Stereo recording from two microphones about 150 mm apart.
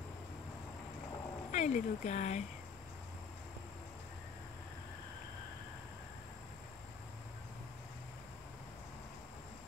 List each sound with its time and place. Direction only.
1.5 s speech: 55° left (ahead or behind)